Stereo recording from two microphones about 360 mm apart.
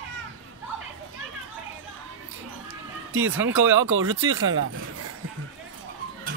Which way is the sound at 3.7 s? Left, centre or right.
Centre.